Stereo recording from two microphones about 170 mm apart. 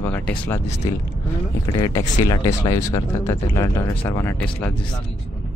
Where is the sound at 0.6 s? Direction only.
40° left (ahead or behind).